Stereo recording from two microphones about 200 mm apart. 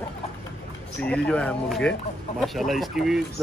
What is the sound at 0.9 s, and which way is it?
Speech, 5° left (ahead or behind).